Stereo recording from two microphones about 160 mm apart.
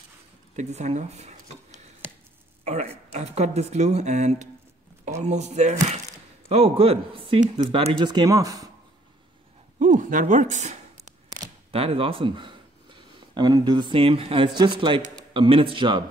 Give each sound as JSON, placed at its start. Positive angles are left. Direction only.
{"t": 0.6, "sound": "speech", "side_deg": -45}
{"t": 9.8, "sound": "speech", "side_deg": -55}
{"t": 11.7, "sound": "speech", "side_deg": -35}